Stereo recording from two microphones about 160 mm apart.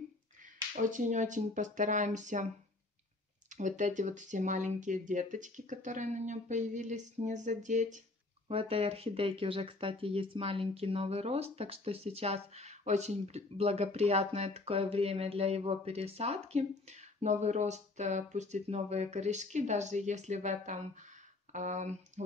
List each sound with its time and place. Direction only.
0.8 s speech: 50° right (ahead or behind)
3.5 s speech: 50° right (ahead or behind)
8.5 s speech: 35° right (ahead or behind)